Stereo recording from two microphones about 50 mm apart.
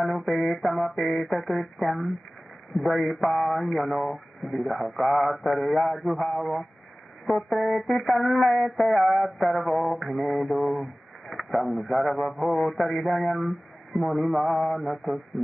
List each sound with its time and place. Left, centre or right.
0.0 s speech: centre
2.8 s mantra: centre